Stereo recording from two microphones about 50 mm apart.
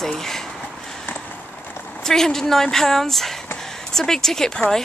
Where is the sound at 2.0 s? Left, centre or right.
Centre.